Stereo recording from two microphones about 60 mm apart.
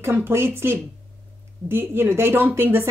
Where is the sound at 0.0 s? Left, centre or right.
Right.